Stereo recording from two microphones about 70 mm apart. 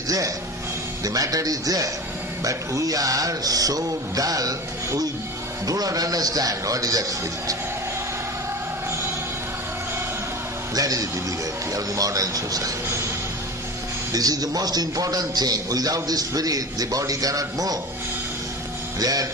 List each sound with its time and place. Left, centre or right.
1.0 s a man's voice: right
10.7 s a man's voice: right
14.1 s a man's voice: right
18.9 s a man's voice: right